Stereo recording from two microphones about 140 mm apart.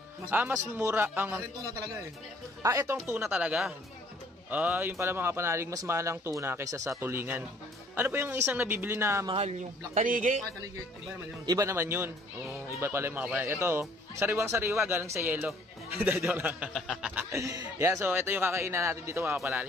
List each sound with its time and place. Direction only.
0.3 s speech: 10° right (ahead or behind)
2.6 s speech: 20° right (ahead or behind)
3.3 s speech: 5° right (ahead or behind)
9.3 s a man's voice: 50° right (ahead or behind)
9.9 s speech: 70° right (ahead or behind)
11.4 s speech: 25° right (ahead or behind)
16.7 s speech: 5° left (ahead or behind)
17.1 s speech: 20° right (ahead or behind)